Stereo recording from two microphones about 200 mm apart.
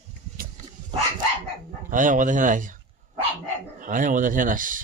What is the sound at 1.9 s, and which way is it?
Speech, 40° right (ahead or behind).